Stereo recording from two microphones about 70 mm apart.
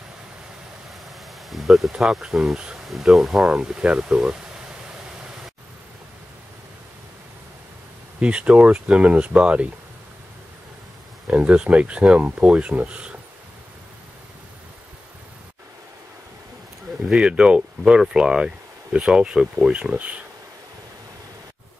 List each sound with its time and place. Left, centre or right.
1.5 s speech: centre
8.2 s speech: centre
11.2 s speech: centre
17.0 s speech: centre